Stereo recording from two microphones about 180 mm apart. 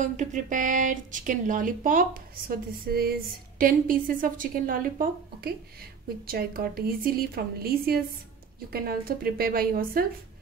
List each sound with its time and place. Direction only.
0.0 s a woman's voice: 45° right (ahead or behind)